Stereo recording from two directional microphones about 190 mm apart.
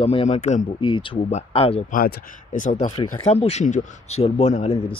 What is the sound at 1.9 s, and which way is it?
Speech, 45° left (ahead or behind).